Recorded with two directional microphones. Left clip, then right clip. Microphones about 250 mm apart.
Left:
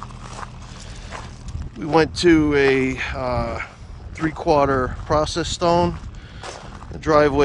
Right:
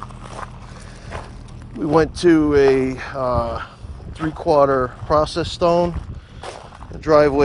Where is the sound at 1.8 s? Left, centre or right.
Centre.